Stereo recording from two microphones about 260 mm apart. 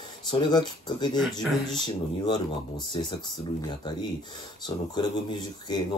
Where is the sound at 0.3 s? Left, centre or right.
Centre.